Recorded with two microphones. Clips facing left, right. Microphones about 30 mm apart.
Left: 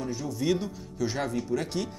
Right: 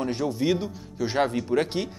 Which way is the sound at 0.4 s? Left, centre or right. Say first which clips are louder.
Right 3 dB; right.